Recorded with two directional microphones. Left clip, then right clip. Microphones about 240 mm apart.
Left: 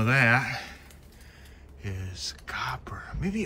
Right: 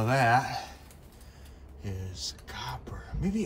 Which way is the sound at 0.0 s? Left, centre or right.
Right.